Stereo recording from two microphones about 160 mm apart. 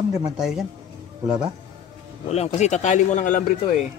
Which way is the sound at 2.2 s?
40° left (ahead or behind).